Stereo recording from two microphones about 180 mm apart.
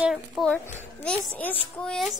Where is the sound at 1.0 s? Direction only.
10° left (ahead or behind).